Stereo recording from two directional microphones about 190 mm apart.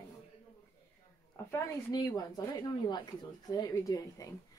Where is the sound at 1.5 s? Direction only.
20° left (ahead or behind).